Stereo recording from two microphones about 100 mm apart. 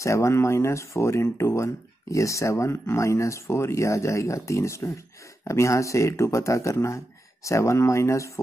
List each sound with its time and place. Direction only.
0.0 s speech: 30° left (ahead or behind)